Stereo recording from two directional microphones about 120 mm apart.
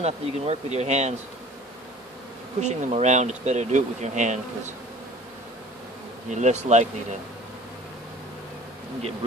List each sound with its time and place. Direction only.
0.0 s speech: 60° right (ahead or behind)
2.6 s speech: 70° right (ahead or behind)
6.3 s speech: 75° right (ahead or behind)